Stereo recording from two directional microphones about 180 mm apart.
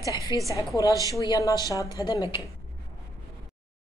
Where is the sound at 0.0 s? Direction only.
15° right (ahead or behind).